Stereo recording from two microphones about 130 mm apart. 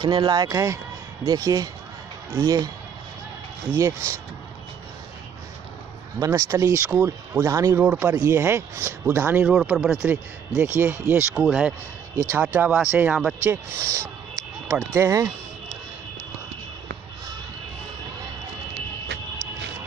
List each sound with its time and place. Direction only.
0.0 s speech: 35° right (ahead or behind)
3.7 s speech: 20° right (ahead or behind)
6.1 s speech: 25° right (ahead or behind)
7.4 s speech: 25° right (ahead or behind)
7.8 s speech: 10° right (ahead or behind)
8.1 s speech: 25° right (ahead or behind)
9.5 s speech: centre (ahead or behind)
10.8 s speech: 15° right (ahead or behind)
11.3 s speech: 5° right (ahead or behind)
13.5 s speech: 25° right (ahead or behind)